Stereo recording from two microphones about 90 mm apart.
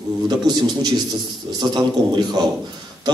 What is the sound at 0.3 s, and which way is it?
A man's voice, 50° right (ahead or behind).